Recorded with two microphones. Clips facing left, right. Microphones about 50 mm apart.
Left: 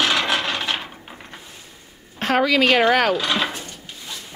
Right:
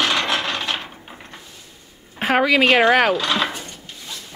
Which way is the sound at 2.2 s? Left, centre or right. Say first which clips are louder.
Right 1 dB; centre.